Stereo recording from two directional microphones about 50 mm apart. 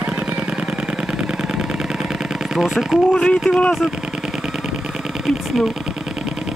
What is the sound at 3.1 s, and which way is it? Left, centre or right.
Speech, centre.